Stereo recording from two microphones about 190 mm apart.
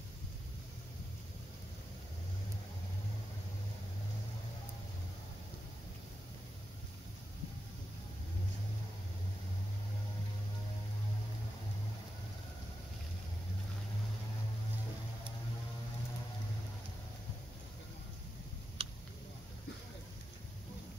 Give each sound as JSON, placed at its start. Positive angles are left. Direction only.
{"t": 18.8, "sound": "tick", "side_deg": -30}